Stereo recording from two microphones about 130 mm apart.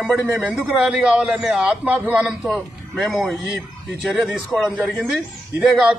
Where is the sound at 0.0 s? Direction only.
5° right (ahead or behind).